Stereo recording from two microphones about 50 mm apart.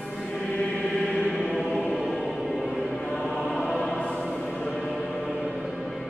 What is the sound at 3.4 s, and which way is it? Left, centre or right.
Chant, centre.